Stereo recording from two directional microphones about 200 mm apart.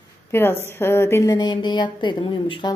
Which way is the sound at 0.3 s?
10° left (ahead or behind).